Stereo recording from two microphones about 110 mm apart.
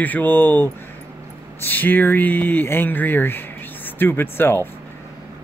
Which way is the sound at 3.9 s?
20° left (ahead or behind).